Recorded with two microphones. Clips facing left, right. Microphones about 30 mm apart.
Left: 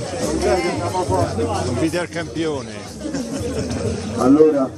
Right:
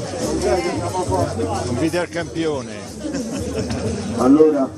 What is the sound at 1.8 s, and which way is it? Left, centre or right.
Speech, centre.